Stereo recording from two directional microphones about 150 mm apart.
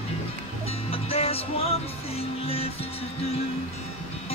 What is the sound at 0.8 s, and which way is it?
Music, 40° left (ahead or behind).